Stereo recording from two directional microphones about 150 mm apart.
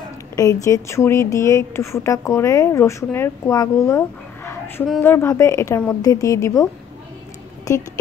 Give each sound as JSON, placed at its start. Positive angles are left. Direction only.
{"t": 0.4, "sound": "speech", "side_deg": 20}
{"t": 5.0, "sound": "speech", "side_deg": 15}
{"t": 7.7, "sound": "speech", "side_deg": 25}